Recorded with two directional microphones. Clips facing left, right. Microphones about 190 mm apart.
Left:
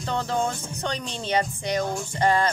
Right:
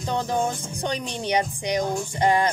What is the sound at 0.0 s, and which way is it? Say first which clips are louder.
Speech: right 1 dB; 15° right (ahead or behind).